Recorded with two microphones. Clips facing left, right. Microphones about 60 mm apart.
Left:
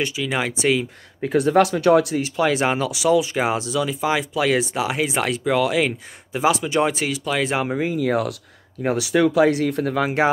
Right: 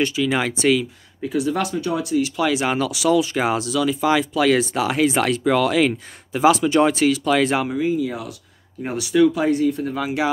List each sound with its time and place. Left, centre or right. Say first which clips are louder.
0.0 s speech: right 3 dB; centre
1.2 s speech: left 4 dB; left
1.6 s speech: left 8 dB; left
2.1 s speech: even; left
2.7 s speech: even; left
7.8 s speech: left 1 dB; left
8.8 s speech: left 5 dB; left
9.3 s speech: left 2 dB; left
10.0 s speech: left 2 dB; left